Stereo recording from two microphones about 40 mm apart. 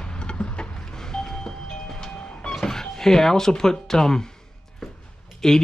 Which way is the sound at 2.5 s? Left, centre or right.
Centre.